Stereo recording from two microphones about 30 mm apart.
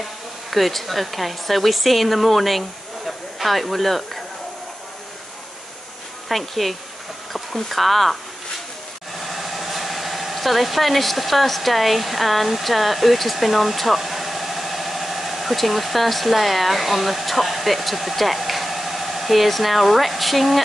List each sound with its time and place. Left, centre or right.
0.0 s speech: centre
6.2 s speech: centre
9.2 s speech: centre